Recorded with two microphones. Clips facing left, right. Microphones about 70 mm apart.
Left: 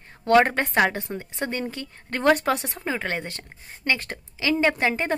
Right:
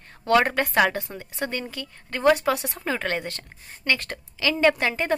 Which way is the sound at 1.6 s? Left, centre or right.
Left.